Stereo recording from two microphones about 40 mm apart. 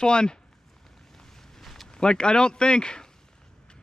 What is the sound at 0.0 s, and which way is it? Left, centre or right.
Speech, left.